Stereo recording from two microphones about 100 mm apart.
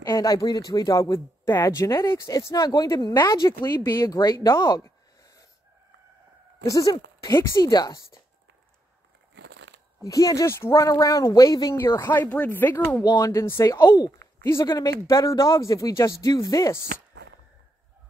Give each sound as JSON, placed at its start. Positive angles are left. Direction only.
{"t": 0.0, "sound": "a woman's voice", "side_deg": 35}
{"t": 6.7, "sound": "speech", "side_deg": 40}
{"t": 7.3, "sound": "speech", "side_deg": 30}
{"t": 10.0, "sound": "speech", "side_deg": 35}
{"t": 11.8, "sound": "speech", "side_deg": 25}
{"t": 13.1, "sound": "speech", "side_deg": 30}
{"t": 14.5, "sound": "speech", "side_deg": 30}